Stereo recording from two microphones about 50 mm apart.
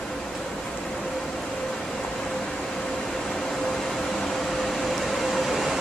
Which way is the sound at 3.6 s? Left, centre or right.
Centre.